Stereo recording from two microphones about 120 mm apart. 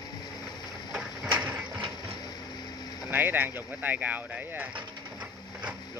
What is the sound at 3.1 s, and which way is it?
Speech, 15° right (ahead or behind).